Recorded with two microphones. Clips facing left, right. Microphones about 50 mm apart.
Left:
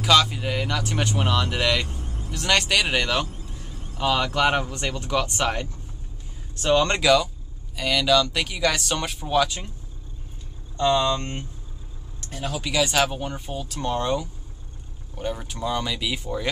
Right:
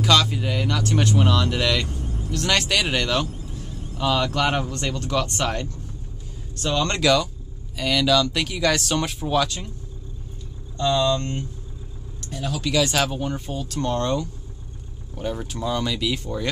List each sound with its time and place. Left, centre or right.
0.0 s speech: centre
7.0 s speech: centre
10.8 s speech: left
12.7 s speech: centre